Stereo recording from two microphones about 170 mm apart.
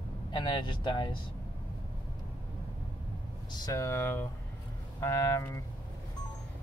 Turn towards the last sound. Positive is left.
turn(degrees=20)  # may be behind; listen again after turning